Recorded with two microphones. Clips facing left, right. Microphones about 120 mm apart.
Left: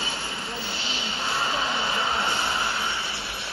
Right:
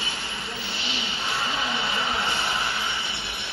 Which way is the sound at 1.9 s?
30° left (ahead or behind).